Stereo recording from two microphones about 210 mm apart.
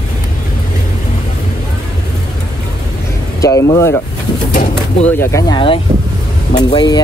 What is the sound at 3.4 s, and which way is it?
Speech, 15° left (ahead or behind).